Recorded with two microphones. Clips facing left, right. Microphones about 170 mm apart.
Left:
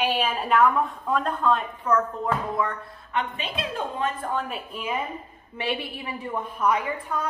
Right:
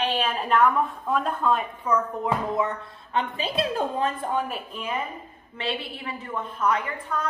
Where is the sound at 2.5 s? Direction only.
25° right (ahead or behind).